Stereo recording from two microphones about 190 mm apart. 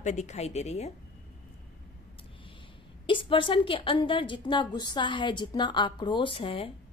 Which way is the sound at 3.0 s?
25° left (ahead or behind).